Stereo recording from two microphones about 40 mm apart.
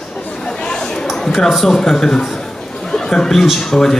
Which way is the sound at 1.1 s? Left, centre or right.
Centre.